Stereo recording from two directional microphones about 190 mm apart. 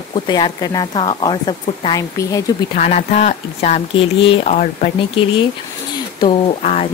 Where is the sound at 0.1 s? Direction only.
25° left (ahead or behind).